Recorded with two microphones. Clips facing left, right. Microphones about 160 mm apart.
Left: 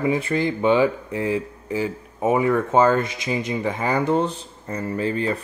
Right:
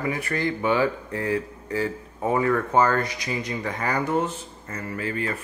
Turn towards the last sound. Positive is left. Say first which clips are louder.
# left 5 dB
turn(degrees=30)  # may be behind; listen again after turning